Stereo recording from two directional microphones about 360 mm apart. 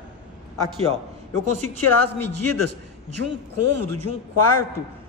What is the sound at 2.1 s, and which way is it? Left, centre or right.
Speech, right.